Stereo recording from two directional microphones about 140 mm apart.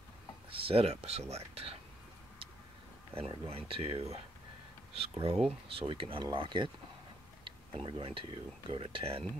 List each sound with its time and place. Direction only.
0.5 s speech: 40° right (ahead or behind)
3.2 s speech: 45° right (ahead or behind)
7.7 s speech: 40° right (ahead or behind)